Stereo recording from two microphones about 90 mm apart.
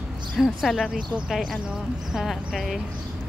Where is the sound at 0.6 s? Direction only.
Centre (ahead or behind).